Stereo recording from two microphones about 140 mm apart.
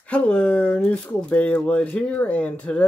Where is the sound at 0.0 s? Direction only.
10° left (ahead or behind).